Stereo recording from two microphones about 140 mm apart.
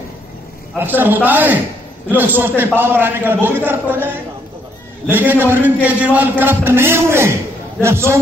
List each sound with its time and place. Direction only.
0.7 s a man's voice: 15° right (ahead or behind)